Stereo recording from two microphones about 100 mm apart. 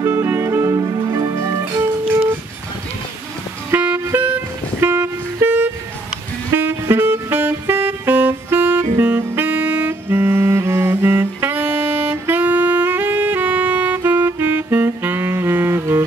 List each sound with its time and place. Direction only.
0.0 s music: 25° right (ahead or behind)
3.7 s music: 20° right (ahead or behind)
4.7 s vehicle: 25° right (ahead or behind)
6.5 s music: 25° right (ahead or behind)